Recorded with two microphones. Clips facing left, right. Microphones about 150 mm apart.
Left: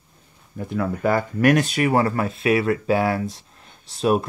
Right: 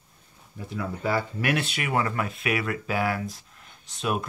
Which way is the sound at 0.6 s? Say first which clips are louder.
Left 8 dB; 55° left (ahead or behind).